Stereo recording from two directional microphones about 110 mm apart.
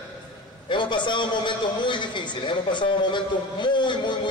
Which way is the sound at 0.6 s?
45° left (ahead or behind).